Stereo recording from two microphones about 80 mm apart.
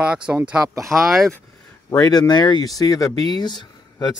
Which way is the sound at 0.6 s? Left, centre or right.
Right.